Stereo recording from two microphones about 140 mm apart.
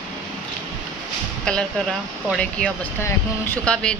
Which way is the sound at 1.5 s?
5° left (ahead or behind).